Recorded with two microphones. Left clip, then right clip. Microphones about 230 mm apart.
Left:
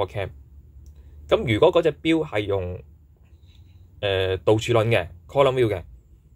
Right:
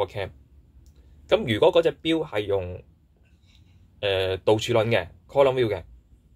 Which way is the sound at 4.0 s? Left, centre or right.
Centre.